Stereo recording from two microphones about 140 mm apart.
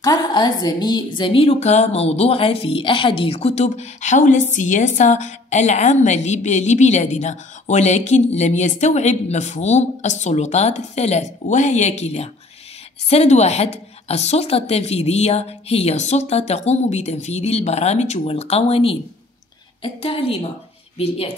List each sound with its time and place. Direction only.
0.0 s a woman's voice: 30° left (ahead or behind)